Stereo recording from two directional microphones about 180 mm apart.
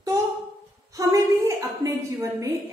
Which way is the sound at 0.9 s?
20° right (ahead or behind).